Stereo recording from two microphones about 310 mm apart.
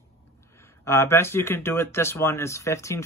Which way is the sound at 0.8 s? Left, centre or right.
Centre.